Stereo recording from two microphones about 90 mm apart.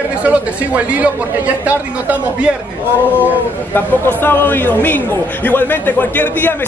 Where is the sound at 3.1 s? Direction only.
20° left (ahead or behind).